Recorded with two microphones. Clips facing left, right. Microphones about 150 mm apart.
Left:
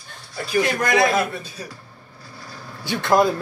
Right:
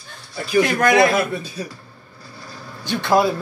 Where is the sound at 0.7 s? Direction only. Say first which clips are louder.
Right 7 dB; 65° right (ahead or behind).